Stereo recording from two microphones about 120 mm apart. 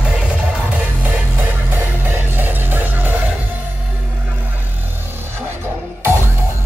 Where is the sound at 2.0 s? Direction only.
15° right (ahead or behind).